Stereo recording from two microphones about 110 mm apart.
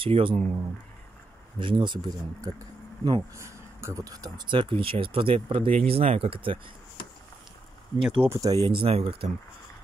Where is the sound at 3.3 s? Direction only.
25° right (ahead or behind).